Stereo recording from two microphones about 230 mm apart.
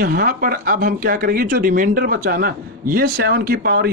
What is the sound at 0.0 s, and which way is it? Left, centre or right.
Speech, right.